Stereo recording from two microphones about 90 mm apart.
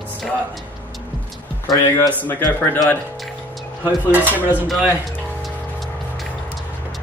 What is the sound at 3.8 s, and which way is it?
Speech, 20° right (ahead or behind).